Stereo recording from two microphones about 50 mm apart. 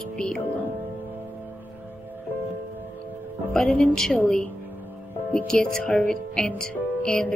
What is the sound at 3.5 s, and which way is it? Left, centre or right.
A woman's voice, centre.